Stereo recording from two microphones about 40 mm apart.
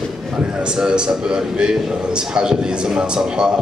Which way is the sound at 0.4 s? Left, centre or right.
Right.